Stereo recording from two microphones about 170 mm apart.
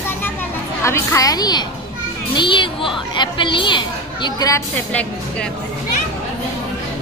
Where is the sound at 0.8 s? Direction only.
15° left (ahead or behind).